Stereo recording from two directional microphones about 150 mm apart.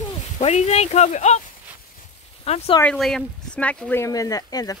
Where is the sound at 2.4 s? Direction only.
40° left (ahead or behind).